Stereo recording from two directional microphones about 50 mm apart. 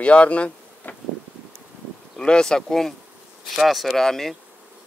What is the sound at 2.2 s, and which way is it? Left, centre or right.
Speech, centre.